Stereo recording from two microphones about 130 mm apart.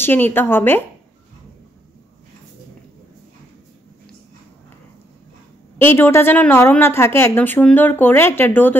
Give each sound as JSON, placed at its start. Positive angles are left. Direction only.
{"t": 0.0, "sound": "speech", "side_deg": 15}
{"t": 5.8, "sound": "speech", "side_deg": 15}